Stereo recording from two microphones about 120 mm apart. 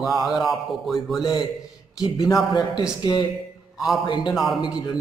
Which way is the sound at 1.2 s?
40° left (ahead or behind).